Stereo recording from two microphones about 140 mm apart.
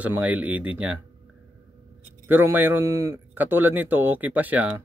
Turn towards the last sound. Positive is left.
turn(degrees=-10)  # may be behind; listen again after turning